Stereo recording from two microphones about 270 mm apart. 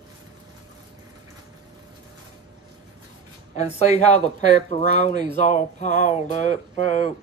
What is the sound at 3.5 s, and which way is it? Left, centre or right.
Speech, left.